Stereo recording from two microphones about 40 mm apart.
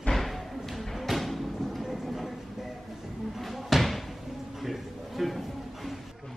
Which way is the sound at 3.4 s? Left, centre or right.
Centre.